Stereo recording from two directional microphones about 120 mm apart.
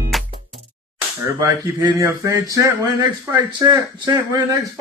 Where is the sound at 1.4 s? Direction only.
25° right (ahead or behind).